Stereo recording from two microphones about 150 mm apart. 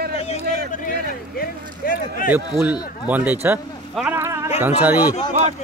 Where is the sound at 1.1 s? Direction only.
70° left (ahead or behind).